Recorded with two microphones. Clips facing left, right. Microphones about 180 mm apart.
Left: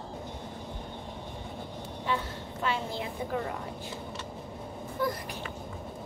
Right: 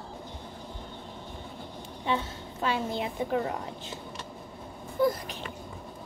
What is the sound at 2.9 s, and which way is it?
Speech, 20° right (ahead or behind).